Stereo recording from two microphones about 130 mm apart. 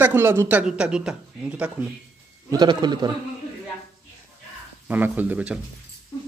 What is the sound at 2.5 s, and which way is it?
Speech, 35° right (ahead or behind).